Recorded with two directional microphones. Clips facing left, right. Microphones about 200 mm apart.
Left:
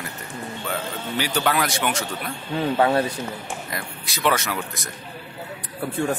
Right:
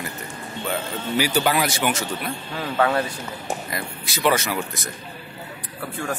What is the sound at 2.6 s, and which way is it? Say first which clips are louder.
Speech: left 2 dB; 25° left (ahead or behind).